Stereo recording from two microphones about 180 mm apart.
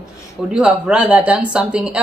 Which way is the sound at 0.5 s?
5° right (ahead or behind).